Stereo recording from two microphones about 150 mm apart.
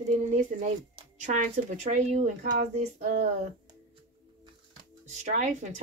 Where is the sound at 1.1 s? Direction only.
55° right (ahead or behind).